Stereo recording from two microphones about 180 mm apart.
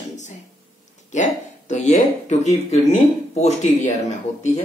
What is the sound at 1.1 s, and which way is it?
Speech, 40° left (ahead or behind).